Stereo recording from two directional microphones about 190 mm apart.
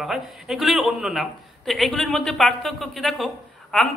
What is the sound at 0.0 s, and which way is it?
A man's voice, centre (ahead or behind).